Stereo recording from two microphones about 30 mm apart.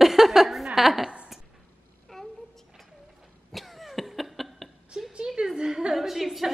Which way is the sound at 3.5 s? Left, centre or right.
Centre.